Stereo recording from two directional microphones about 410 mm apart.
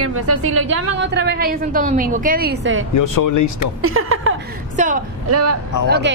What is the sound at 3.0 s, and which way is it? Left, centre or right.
Speech, left.